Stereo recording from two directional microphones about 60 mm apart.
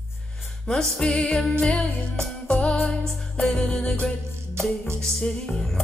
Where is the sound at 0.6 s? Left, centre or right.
Centre.